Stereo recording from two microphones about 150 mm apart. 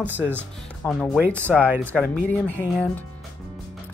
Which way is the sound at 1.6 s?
15° right (ahead or behind).